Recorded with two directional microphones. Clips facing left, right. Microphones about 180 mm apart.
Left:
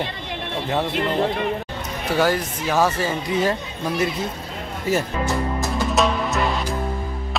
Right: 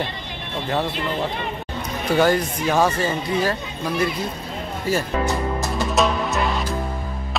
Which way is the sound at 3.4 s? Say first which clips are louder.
Left 1 dB; 20° left (ahead or behind).